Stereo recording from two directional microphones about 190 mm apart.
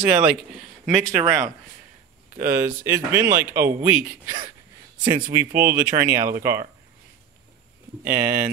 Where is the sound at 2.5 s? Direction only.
15° right (ahead or behind).